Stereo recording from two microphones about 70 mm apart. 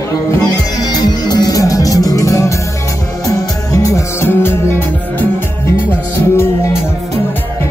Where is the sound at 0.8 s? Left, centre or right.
Left.